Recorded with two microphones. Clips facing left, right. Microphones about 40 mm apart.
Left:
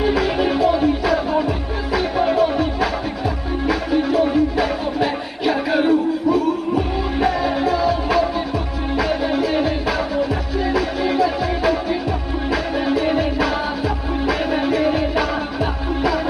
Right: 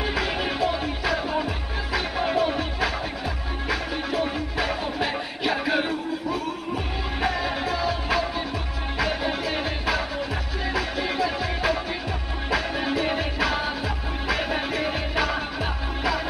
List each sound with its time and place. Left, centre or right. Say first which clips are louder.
0.0 s music: left 8 dB; centre